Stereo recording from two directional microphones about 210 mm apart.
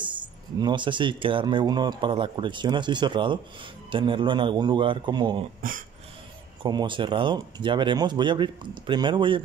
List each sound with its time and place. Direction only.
0.0 s speech: 20° right (ahead or behind)
5.6 s speech: 40° right (ahead or behind)
6.6 s speech: 20° right (ahead or behind)